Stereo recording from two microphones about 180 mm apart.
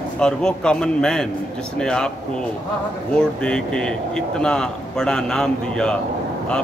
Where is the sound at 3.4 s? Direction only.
5° left (ahead or behind).